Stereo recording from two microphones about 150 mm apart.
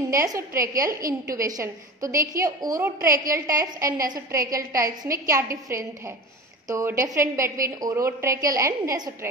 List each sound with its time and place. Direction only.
0.1 s a woman's voice: 20° right (ahead or behind)